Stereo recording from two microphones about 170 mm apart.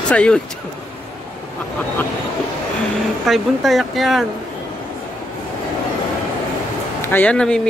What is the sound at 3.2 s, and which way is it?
Speech, centre (ahead or behind).